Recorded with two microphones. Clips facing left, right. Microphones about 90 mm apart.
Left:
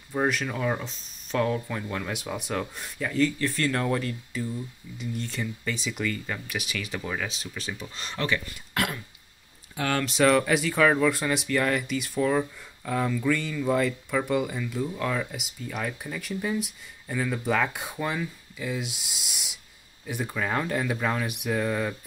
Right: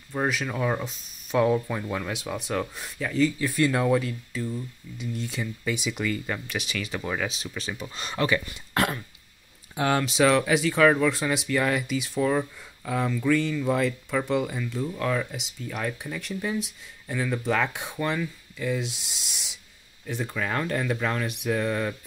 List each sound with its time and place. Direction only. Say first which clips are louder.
0.1 s speech: left 1 dB; centre (ahead or behind)
6.4 s speech: right 1 dB; 5° left (ahead or behind)
8.7 s a sound: right 3 dB; 35° right (ahead or behind)
9.8 s speech: right 3 dB; 20° right (ahead or behind)
10.0 s speech: left 2 dB; centre (ahead or behind)